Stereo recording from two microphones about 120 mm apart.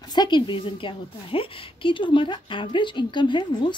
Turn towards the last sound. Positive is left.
turn(degrees=40)  # may be behind; listen again after turning